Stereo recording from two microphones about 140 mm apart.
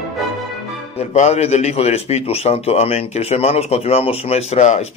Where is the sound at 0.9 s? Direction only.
50° left (ahead or behind).